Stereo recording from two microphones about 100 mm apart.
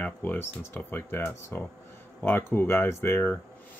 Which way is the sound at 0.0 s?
20° left (ahead or behind).